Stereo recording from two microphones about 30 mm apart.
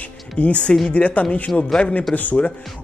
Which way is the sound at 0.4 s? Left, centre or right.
Left.